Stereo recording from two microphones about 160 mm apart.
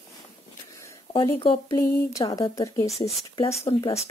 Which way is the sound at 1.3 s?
35° left (ahead or behind).